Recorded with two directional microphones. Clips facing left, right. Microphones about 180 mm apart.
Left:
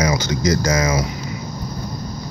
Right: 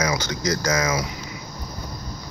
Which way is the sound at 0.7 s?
30° left (ahead or behind).